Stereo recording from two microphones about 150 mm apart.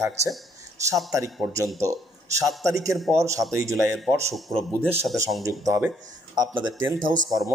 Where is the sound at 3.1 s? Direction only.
20° right (ahead or behind).